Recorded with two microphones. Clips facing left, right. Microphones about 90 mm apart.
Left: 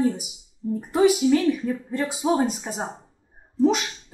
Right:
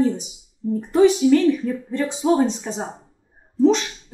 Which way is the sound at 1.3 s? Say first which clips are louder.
Right 4 dB; 10° left (ahead or behind).